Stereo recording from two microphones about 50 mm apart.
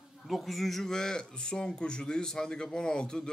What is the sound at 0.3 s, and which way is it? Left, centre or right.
Speech, centre.